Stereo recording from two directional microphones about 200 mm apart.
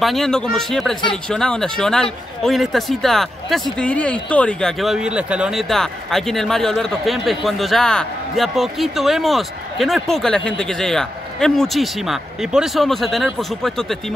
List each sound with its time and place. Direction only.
0.0 s speech: centre (ahead or behind)